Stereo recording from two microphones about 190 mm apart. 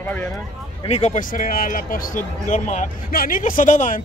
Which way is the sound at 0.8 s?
35° left (ahead or behind).